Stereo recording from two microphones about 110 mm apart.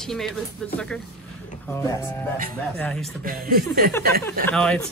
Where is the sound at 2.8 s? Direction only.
10° left (ahead or behind).